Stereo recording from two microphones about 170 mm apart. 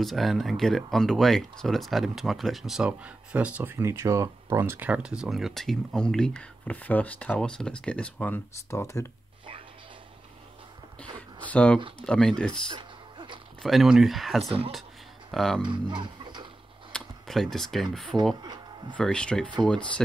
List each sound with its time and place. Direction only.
0.0 s speech: centre (ahead or behind); by 9.1 s 15° left (ahead or behind)
11.1 s a sound: 10° left (ahead or behind)
12.0 s speech: 5° left (ahead or behind)
12.7 s music: 30° right (ahead or behind)
13.6 s speech: centre (ahead or behind)
14.4 s speech: 35° right (ahead or behind)
15.3 s speech: 5° left (ahead or behind)
15.6 s music: 30° right (ahead or behind)
16.9 s a sound: centre (ahead or behind)
18.4 s music: 25° right (ahead or behind)
18.9 s speech: 5° left (ahead or behind)